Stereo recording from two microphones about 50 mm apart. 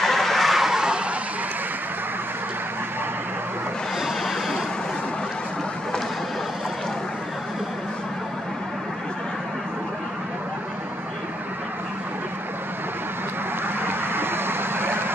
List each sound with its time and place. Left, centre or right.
0.0 s vehicle: centre
4.0 s a sound: centre
13.7 s vehicle: right